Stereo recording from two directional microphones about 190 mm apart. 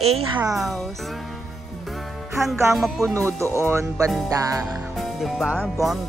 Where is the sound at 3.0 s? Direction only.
15° right (ahead or behind).